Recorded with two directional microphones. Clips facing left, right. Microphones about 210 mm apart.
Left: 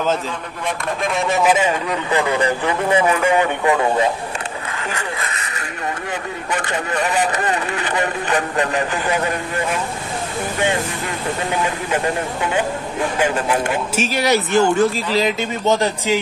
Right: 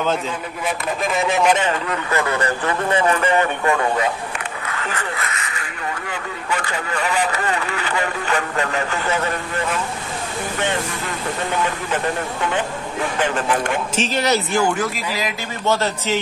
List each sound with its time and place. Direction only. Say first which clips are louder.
1.0 s a man's voice: left 1 dB; centre (ahead or behind); by 4.0 s 20° left (ahead or behind)
7.3 s a man's voice: left 2 dB; 20° left (ahead or behind)
11.5 s a man's voice: left 1 dB; 10° left (ahead or behind)
13.2 s a man's voice: left 1 dB; 10° left (ahead or behind)